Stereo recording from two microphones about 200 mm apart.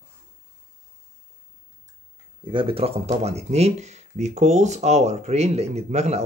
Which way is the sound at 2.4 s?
25° right (ahead or behind).